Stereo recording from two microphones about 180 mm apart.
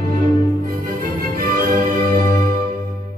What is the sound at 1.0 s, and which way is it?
Music, 50° right (ahead or behind).